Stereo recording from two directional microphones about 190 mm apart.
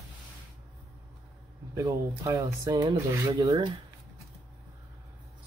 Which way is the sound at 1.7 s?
15° right (ahead or behind).